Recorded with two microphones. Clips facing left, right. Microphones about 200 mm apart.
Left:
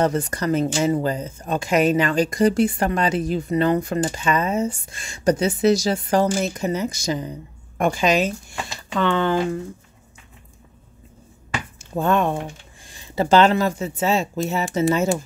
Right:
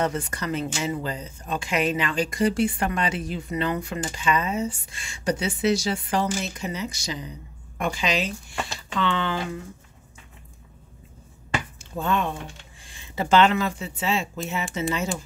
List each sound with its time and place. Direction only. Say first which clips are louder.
0.0 s speech: left 6 dB; 40° left (ahead or behind)
11.9 s speech: left 6 dB; 50° left (ahead or behind)